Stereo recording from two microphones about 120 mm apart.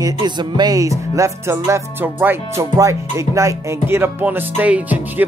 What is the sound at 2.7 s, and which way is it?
Music, 25° right (ahead or behind).